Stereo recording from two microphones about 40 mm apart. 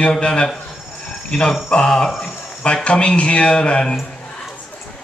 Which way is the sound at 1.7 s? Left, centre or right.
Left.